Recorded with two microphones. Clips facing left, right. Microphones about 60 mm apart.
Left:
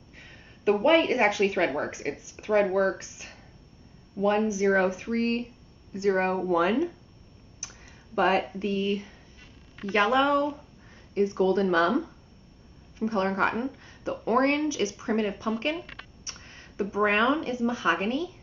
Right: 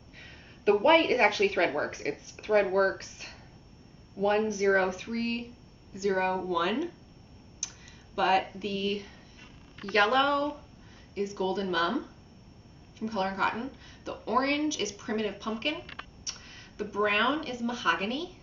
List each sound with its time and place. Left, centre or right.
0.1 s speech: centre
4.8 s speech: left
11.1 s speech: left
13.0 s speech: left
16.3 s a sound: left
16.9 s speech: left